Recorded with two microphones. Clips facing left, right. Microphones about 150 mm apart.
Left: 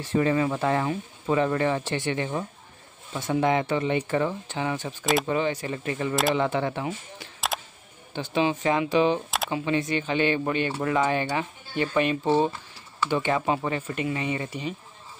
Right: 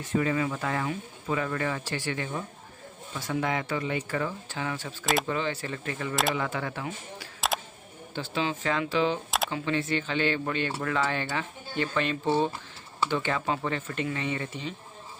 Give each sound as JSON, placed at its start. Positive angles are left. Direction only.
{"t": 0.0, "sound": "speech", "side_deg": 30}
{"t": 7.3, "sound": "a sound", "side_deg": 0}
{"t": 8.1, "sound": "speech", "side_deg": 20}